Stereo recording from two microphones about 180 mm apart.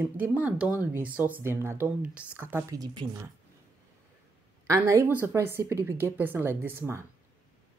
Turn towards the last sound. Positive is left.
turn(degrees=-15)  # may be behind; listen again after turning